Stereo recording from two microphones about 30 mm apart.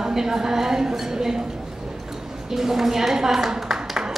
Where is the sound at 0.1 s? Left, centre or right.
Centre.